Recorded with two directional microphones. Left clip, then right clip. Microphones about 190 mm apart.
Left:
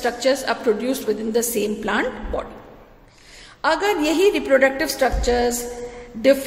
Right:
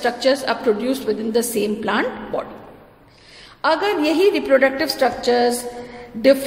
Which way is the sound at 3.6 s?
5° left (ahead or behind).